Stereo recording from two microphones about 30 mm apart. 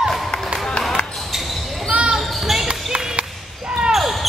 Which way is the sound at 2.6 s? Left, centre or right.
Right.